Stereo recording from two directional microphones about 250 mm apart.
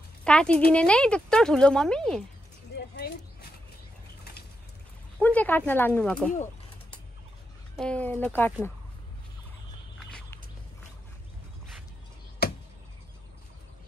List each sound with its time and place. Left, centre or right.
0.2 s speech: centre
2.7 s a sound: left
4.2 s bird: left
5.2 s speech: centre
7.7 s speech: centre
12.4 s a sound: left